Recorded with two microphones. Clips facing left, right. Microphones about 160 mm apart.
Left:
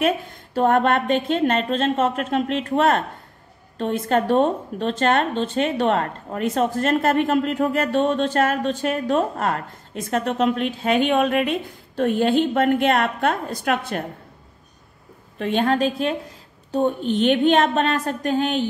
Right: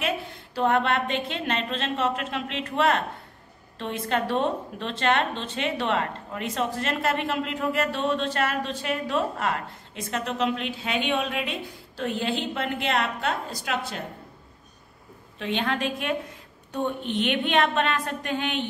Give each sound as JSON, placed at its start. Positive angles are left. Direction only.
{"t": 0.0, "sound": "a woman's voice", "side_deg": 45}
{"t": 15.3, "sound": "a woman's voice", "side_deg": 45}